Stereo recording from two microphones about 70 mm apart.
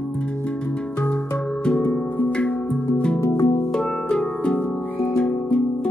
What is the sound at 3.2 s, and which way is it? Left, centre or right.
Music, left.